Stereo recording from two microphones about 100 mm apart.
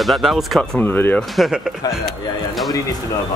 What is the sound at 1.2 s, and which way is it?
Speech, 5° right (ahead or behind).